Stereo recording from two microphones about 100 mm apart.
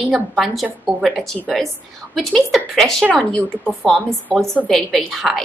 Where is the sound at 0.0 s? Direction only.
Centre (ahead or behind).